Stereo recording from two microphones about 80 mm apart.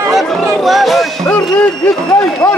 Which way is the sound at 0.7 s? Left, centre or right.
Centre.